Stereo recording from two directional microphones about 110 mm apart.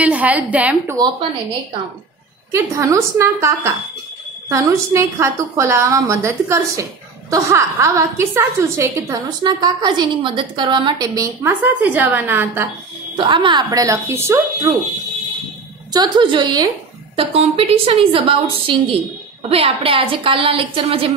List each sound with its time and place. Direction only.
0.0 s a woman's voice: 15° right (ahead or behind)
1.0 s a woman's voice: 35° right (ahead or behind)
2.5 s a woman's voice: 25° right (ahead or behind)
9.1 s a woman's voice: 40° right (ahead or behind)
11.6 s a woman's voice: 15° right (ahead or behind)
13.1 s a woman's voice: 45° right (ahead or behind)
13.7 s a woman's voice: 30° right (ahead or behind)
14.7 s a woman's voice: 35° right (ahead or behind)
15.9 s a woman's voice: 45° right (ahead or behind)
17.2 s a woman's voice: 65° right (ahead or behind)